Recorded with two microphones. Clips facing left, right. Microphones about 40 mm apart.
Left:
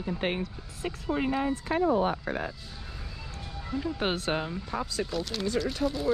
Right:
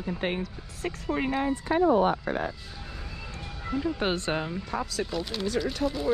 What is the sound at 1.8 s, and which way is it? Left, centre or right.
Speech, right.